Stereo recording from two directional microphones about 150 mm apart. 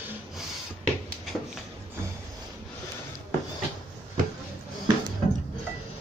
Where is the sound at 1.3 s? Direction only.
5° left (ahead or behind).